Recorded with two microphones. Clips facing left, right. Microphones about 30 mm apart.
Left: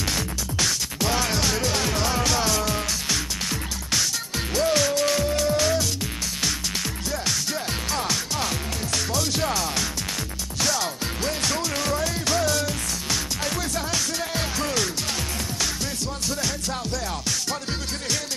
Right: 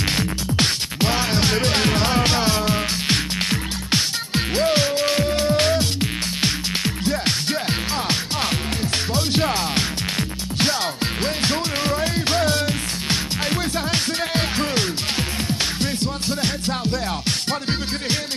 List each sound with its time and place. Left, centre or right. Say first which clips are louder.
0.1 s music: right 5 dB; right